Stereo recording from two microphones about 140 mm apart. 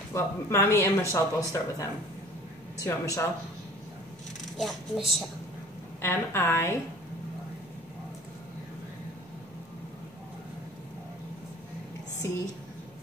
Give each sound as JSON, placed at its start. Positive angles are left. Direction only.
{"t": 0.1, "sound": "speech", "side_deg": 20}
{"t": 4.6, "sound": "a woman's voice", "side_deg": 0}
{"t": 5.9, "sound": "a woman's voice", "side_deg": 15}
{"t": 12.2, "sound": "speech", "side_deg": 20}